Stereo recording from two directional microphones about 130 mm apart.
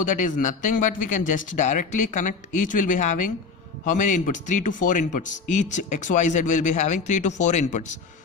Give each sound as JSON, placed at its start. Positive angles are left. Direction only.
{"t": 0.0, "sound": "a man's voice", "side_deg": 80}